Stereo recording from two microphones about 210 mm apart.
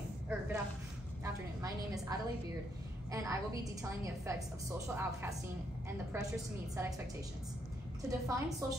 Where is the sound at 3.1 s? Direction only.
15° right (ahead or behind).